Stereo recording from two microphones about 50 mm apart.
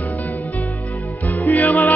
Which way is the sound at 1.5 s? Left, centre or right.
Left.